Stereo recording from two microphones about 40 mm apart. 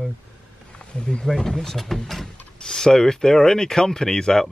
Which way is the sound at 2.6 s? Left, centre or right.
Centre.